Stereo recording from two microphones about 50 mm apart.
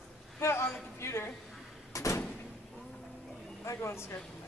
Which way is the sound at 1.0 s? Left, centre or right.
Left.